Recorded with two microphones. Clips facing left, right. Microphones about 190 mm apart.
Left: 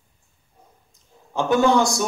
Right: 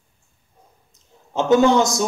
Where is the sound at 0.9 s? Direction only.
20° right (ahead or behind).